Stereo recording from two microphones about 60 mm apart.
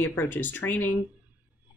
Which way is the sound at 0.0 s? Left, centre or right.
Left.